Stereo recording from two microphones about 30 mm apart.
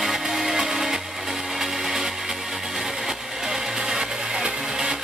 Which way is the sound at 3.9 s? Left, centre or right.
Right.